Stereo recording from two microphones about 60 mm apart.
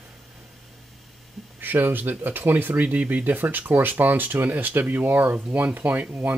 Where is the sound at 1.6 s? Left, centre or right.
Right.